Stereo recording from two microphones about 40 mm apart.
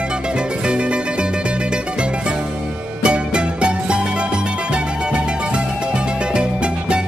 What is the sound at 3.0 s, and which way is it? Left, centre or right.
Music, right.